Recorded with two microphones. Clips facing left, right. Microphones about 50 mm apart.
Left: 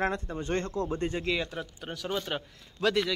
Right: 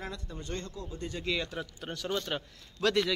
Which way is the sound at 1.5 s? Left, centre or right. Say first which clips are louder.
Left 1 dB; centre.